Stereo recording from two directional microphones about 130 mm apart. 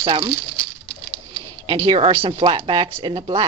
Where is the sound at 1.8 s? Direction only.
45° right (ahead or behind).